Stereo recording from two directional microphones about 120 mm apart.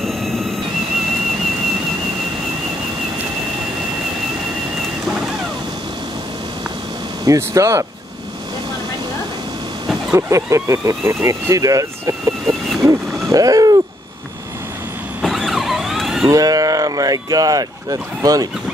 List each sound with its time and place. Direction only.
0.0 s train: centre (ahead or behind)
7.2 s speech: 25° right (ahead or behind)
10.1 s speech: 25° right (ahead or behind)
12.8 s a sound: 30° right (ahead or behind)
15.2 s vehicle: centre (ahead or behind)
16.3 s speech: 30° right (ahead or behind)